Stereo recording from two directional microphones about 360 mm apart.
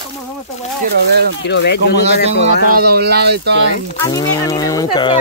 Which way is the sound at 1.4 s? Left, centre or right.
Left.